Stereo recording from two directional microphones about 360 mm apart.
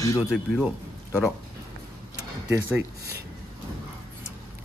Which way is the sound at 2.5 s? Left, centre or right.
Centre.